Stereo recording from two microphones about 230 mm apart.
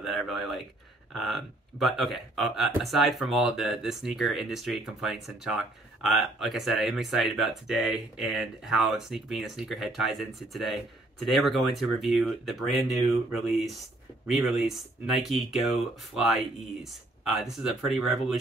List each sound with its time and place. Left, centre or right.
0.0 s speech: centre
13.4 s speech: left
14.2 s speech: centre
16.9 s speech: centre